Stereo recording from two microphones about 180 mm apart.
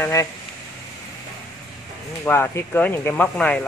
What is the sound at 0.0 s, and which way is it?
Speech, 15° left (ahead or behind).